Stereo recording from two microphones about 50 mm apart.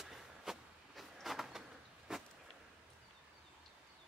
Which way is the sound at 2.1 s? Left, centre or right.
Centre.